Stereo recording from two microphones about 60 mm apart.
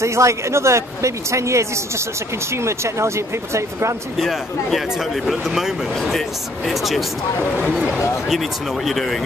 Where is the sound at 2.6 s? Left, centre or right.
Right.